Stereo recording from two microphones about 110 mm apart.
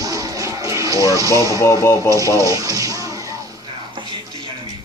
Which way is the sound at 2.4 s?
30° right (ahead or behind).